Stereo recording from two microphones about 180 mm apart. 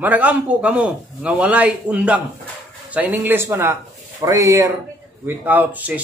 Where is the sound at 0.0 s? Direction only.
10° right (ahead or behind).